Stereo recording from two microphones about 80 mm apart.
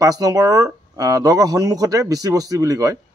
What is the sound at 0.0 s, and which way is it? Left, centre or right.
Speech, right.